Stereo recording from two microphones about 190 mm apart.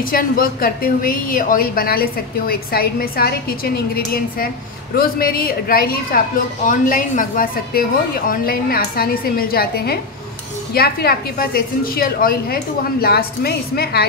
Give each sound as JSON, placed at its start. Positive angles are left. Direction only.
{"t": 0.0, "sound": "a woman's voice", "side_deg": 50}